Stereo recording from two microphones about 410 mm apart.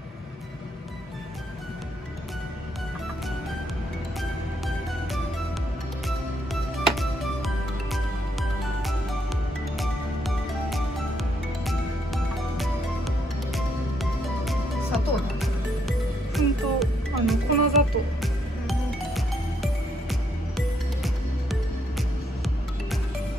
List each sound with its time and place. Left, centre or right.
6.0 s music: centre